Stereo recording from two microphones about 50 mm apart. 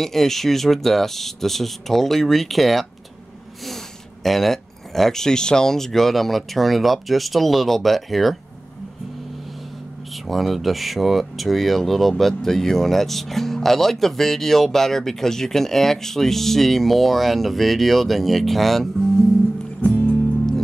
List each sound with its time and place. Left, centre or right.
0.0 s speech: centre
10.1 s speech: centre
19.8 s music: left